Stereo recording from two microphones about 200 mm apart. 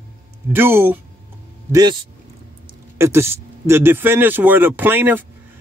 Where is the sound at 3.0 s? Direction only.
10° right (ahead or behind).